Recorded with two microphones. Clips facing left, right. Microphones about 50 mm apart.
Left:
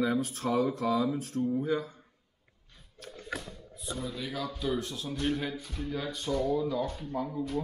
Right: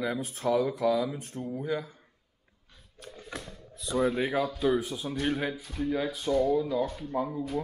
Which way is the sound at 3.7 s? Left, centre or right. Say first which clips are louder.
Right 11 dB; right.